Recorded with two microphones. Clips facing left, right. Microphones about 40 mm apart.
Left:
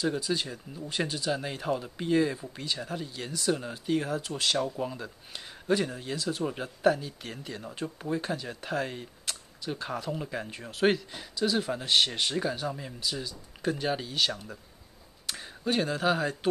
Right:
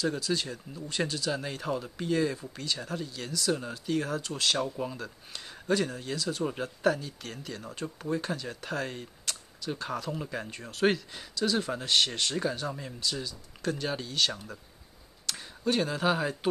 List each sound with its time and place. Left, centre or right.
0.0 s speech: centre